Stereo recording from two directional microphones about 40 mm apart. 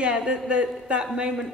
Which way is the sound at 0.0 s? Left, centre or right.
Right.